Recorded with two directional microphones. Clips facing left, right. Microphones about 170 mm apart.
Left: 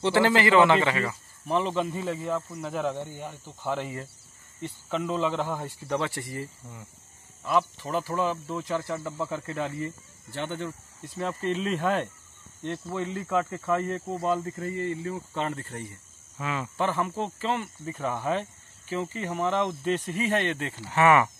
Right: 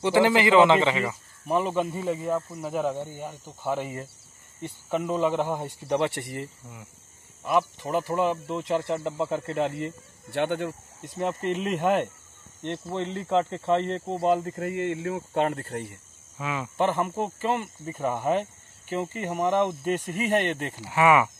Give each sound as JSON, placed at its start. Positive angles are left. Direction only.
{"t": 0.0, "sound": "speech", "side_deg": -15}
{"t": 7.4, "sound": "speech", "side_deg": -15}
{"t": 9.5, "sound": "speech", "side_deg": -70}
{"t": 11.1, "sound": "speech", "side_deg": -15}
{"t": 12.6, "sound": "speech", "side_deg": -25}
{"t": 14.5, "sound": "speech", "side_deg": -70}
{"t": 16.3, "sound": "speech", "side_deg": -15}